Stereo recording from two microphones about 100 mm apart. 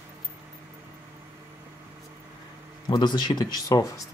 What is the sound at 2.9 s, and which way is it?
Speech, 45° left (ahead or behind).